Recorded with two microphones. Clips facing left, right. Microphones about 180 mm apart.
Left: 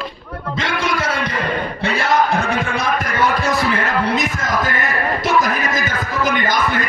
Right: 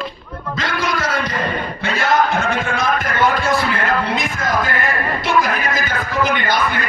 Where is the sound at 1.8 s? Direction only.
35° left (ahead or behind).